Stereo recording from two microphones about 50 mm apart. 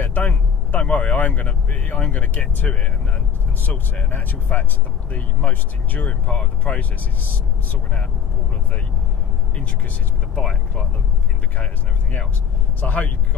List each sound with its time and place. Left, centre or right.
0.0 s speech: left
4.1 s speech: left
9.6 s speech: left
11.5 s speech: left